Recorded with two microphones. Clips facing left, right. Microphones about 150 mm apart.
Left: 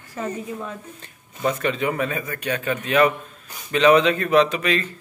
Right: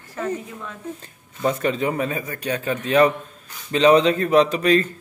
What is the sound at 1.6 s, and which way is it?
Speech, 35° right (ahead or behind).